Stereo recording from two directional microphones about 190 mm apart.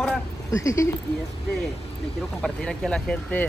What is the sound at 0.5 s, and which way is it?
Speech, 15° left (ahead or behind).